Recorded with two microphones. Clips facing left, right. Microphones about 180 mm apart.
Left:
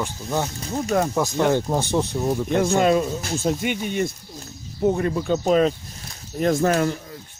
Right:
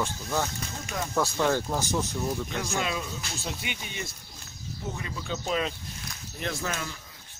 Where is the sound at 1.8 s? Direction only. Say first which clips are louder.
Left 7 dB; 35° left (ahead or behind).